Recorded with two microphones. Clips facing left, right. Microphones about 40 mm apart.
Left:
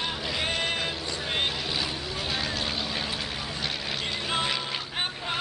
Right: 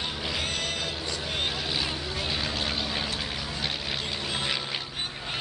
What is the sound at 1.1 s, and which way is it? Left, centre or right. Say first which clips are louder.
Vehicle: left 2 dB; left.